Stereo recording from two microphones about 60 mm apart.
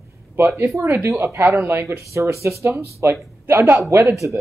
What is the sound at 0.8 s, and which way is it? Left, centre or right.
Speech, right.